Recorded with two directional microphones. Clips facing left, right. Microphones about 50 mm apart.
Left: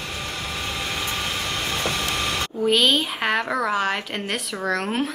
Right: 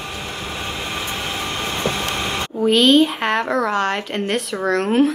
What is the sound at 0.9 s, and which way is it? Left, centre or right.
Vehicle, right.